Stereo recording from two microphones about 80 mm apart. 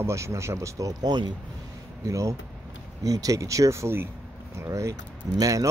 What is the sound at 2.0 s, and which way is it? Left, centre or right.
Speech, right.